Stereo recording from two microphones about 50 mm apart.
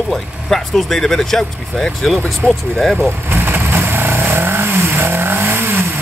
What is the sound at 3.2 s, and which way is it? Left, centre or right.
Vehicle, right.